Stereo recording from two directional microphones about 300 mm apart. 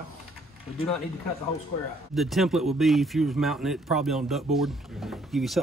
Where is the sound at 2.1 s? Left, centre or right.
Centre.